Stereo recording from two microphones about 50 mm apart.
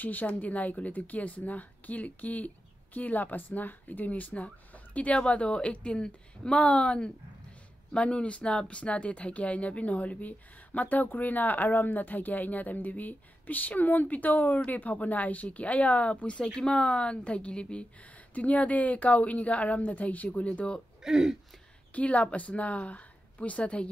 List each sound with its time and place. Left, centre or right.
0.0 s a woman's voice: left
21.0 s speech: centre
21.9 s a woman's voice: left